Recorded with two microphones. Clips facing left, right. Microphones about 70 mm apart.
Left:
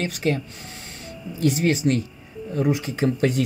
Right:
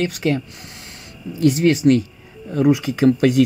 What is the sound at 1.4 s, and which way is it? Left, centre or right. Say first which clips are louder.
Speech: right 6 dB; right.